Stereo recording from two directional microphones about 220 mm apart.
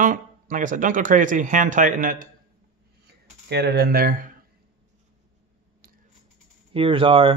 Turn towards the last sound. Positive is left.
turn(degrees=-25)  # may be behind; listen again after turning